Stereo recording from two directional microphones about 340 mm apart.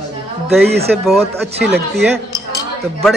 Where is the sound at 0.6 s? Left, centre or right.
Right.